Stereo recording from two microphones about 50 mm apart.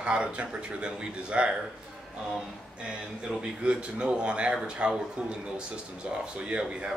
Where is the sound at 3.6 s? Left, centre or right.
Centre.